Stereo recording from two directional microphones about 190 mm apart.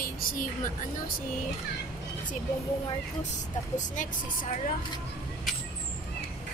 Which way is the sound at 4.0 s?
40° left (ahead or behind).